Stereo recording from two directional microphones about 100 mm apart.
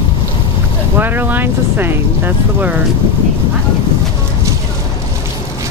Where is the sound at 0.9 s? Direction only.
20° right (ahead or behind).